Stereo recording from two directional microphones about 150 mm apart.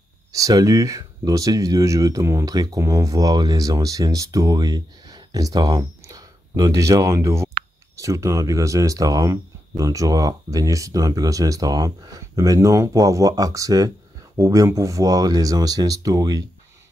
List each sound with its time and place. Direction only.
0.3 s speech: 25° right (ahead or behind)